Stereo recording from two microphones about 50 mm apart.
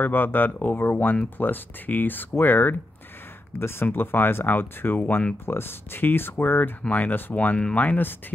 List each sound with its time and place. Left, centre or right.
0.0 s speech: left
3.5 s speech: left
3.8 s speech: left
5.4 s speech: left
6.8 s speech: left
7.3 s speech: left